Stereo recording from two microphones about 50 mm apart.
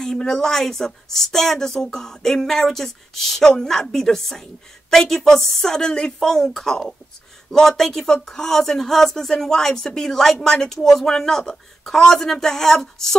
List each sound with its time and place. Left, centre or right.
0.0 s speech: centre